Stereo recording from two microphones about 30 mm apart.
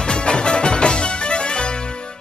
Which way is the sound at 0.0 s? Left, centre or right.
Left.